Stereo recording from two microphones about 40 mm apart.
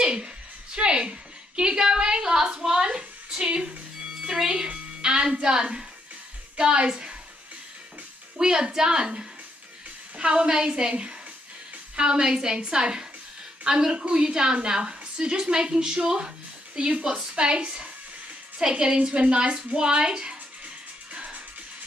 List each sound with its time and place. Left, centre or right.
0.0 s a sound: right
0.7 s a woman's voice: right
8.4 s a woman's voice: right